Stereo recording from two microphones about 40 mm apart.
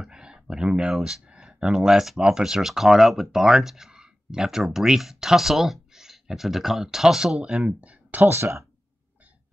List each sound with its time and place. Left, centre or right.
0.0 s a sound: centre
1.7 s speech: centre
7.5 s speech: right
8.2 s speech: right